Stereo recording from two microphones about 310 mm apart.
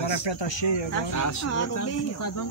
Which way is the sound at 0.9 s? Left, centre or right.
Left.